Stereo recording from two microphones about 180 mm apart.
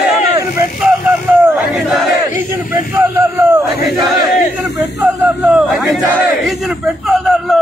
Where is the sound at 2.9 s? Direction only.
15° right (ahead or behind).